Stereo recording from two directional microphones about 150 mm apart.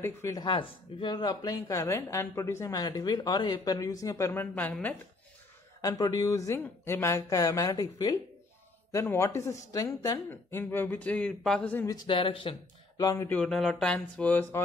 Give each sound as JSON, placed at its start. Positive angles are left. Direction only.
{"t": 0.0, "sound": "speech", "side_deg": 20}
{"t": 0.4, "sound": "speech", "side_deg": 35}
{"t": 5.8, "sound": "speech", "side_deg": 25}
{"t": 11.9, "sound": "speech", "side_deg": 30}
{"t": 13.5, "sound": "speech", "side_deg": 0}